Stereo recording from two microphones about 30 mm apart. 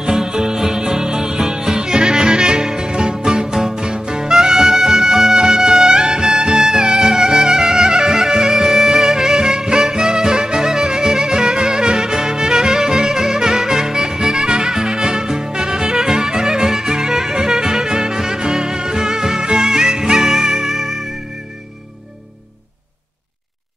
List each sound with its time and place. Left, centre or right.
0.0 s music: right